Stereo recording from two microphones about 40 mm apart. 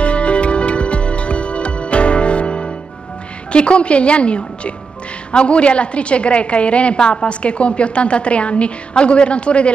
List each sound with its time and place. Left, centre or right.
0.0 s music: left
3.5 s a woman's voice: left